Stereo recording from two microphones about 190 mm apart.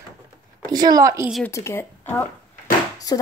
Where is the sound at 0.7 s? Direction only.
20° right (ahead or behind).